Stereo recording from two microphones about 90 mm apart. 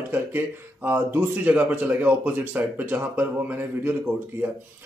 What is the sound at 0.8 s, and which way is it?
Speech, 20° right (ahead or behind).